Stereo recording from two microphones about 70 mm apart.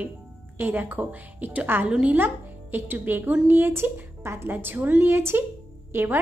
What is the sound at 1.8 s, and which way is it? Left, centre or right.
A woman's voice, centre.